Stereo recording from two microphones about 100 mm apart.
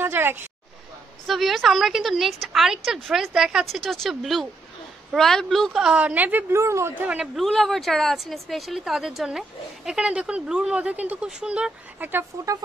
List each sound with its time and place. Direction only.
0.0 s a sound: 20° right (ahead or behind)
1.2 s a woman's voice: centre (ahead or behind); by 6.4 s 15° right (ahead or behind)
6.5 s a woman's voice: 30° right (ahead or behind)
7.1 s a woman's voice: 5° right (ahead or behind)
12.3 s speech: 30° right (ahead or behind)